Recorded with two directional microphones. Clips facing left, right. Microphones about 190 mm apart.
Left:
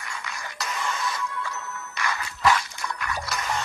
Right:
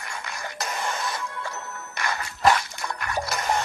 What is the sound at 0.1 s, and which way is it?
Music, 50° right (ahead or behind).